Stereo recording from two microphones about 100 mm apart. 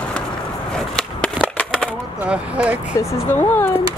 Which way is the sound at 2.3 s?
10° right (ahead or behind).